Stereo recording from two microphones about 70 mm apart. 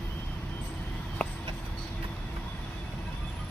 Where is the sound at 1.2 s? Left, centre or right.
Centre.